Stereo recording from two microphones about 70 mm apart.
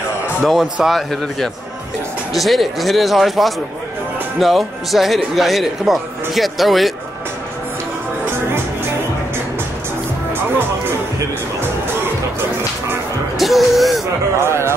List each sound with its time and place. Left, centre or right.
0.4 s speech: centre
13.4 s music: centre
14.4 s a sound: right